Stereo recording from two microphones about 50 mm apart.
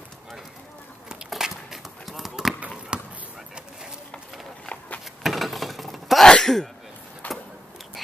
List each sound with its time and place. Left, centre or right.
1.0 s a sound: centre
2.9 s basketball bounce: right
5.2 s mechanisms: centre
6.2 s sneeze: centre
7.2 s vehicle: left